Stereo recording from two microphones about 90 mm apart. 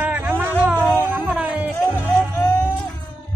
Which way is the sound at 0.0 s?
25° right (ahead or behind).